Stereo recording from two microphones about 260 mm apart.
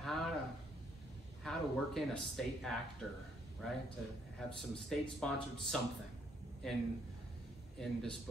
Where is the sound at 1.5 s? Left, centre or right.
Centre.